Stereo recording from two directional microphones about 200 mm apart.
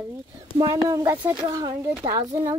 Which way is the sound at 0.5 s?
20° right (ahead or behind).